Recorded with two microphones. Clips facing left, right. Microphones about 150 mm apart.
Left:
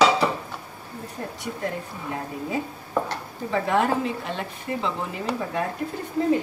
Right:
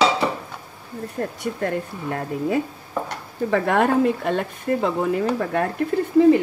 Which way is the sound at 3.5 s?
55° right (ahead or behind).